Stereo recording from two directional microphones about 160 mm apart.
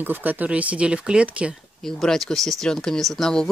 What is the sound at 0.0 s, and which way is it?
Speech, 10° right (ahead or behind).